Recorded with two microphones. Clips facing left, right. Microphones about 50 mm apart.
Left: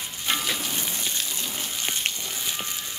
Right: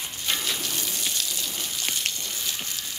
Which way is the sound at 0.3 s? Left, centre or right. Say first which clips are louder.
Left 2 dB; centre.